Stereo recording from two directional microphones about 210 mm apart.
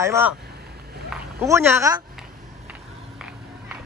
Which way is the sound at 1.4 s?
10° right (ahead or behind).